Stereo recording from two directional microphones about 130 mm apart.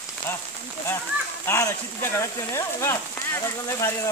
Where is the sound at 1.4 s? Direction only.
20° left (ahead or behind).